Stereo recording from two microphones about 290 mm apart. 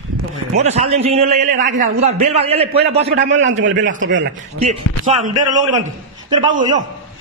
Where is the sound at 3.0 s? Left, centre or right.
Right.